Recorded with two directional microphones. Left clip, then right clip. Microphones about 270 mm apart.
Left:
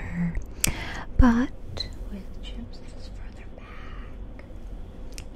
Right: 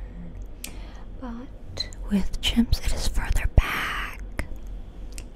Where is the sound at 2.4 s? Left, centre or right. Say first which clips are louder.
Right 18 dB; right.